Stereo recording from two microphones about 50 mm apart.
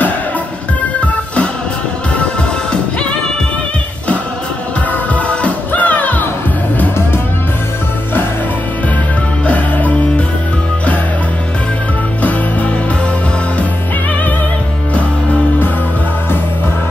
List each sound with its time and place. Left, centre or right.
5.1 s music: left
9.5 s music: left